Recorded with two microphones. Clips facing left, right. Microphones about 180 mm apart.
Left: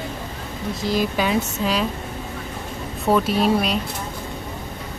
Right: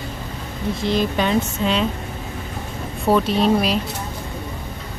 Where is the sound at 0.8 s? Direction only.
5° left (ahead or behind).